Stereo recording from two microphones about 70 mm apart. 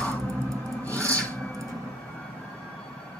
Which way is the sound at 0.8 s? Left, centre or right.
Right.